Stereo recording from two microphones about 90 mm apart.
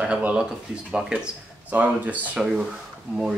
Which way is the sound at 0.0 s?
10° right (ahead or behind).